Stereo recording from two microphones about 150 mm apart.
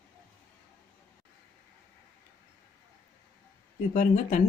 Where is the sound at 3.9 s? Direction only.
55° left (ahead or behind).